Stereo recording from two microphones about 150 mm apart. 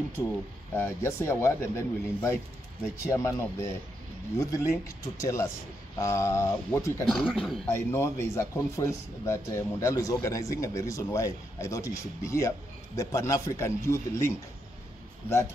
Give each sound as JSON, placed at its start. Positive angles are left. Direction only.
{"t": 0.7, "sound": "speech", "side_deg": 15}
{"t": 7.1, "sound": "speech", "side_deg": 5}
{"t": 7.6, "sound": "speech", "side_deg": 20}